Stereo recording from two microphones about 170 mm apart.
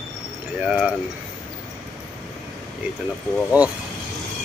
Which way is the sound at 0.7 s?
5° right (ahead or behind).